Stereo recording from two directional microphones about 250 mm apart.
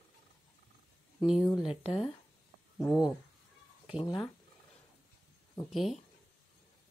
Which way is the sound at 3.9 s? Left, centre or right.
Centre.